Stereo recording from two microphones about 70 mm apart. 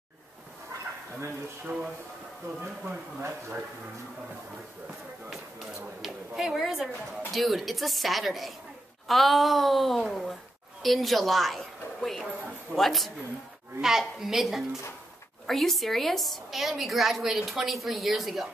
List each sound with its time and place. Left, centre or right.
2.6 s speech: right
6.0 s a woman's voice: centre